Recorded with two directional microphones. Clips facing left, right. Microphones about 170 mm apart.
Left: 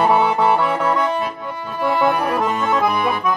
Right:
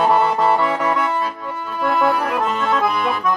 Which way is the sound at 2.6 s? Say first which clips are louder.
Left 1 dB; 15° left (ahead or behind).